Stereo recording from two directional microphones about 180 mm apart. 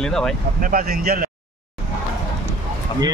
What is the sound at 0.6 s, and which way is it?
Speech, 55° right (ahead or behind).